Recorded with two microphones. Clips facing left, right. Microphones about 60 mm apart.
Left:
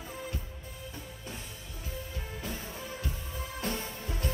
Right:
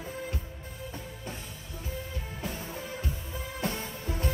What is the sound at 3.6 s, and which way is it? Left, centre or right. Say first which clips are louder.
Music: right 2 dB; right.